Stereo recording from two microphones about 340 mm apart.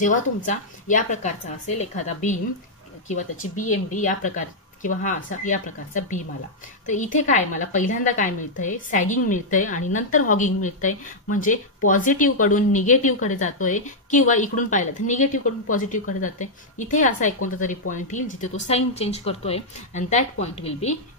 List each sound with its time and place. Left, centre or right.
0.0 s speech: left